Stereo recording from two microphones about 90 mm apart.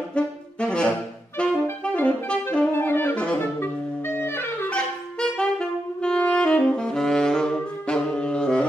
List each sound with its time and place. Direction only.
0.1 s saxophone: 10° left (ahead or behind)
1.9 s saxophone: 10° left (ahead or behind)
2.7 s saxophone: 25° left (ahead or behind)
4.7 s saxophone: 10° left (ahead or behind)